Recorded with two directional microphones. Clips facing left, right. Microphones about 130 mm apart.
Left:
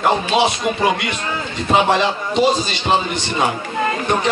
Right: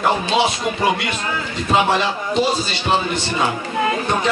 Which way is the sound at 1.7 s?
20° left (ahead or behind).